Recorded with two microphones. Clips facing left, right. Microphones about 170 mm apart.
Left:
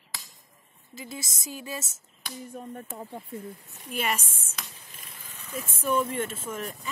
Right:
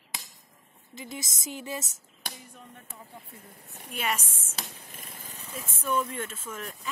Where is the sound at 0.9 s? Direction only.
20° right (ahead or behind).